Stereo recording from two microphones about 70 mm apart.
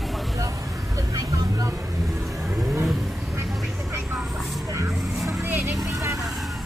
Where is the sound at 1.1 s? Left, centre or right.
Right.